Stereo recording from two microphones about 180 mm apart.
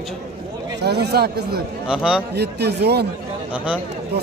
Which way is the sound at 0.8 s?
60° right (ahead or behind).